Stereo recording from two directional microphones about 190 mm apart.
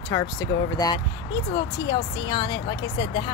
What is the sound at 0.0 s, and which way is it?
Speech, 20° left (ahead or behind).